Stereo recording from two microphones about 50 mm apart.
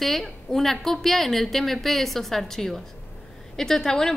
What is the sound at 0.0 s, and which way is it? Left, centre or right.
A woman's voice, centre.